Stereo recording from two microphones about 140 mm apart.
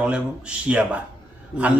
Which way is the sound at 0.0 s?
10° right (ahead or behind).